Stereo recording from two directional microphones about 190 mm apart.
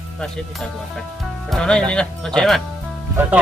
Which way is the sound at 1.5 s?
5° left (ahead or behind).